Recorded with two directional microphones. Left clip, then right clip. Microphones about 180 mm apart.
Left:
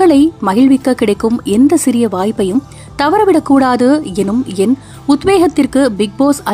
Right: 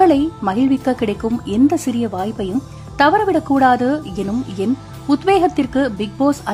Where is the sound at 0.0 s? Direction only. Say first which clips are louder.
Left 4 dB; 20° left (ahead or behind).